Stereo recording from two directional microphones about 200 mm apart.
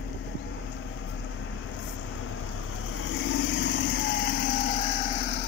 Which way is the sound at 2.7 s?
80° left.